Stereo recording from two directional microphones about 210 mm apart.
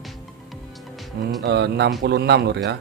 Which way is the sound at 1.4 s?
55° right (ahead or behind).